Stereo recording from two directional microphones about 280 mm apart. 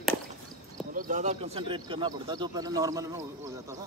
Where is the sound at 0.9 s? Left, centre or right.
Right; by 3.8 s centre.